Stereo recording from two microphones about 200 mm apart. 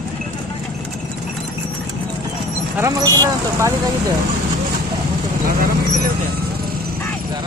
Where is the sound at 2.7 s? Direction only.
15° right (ahead or behind).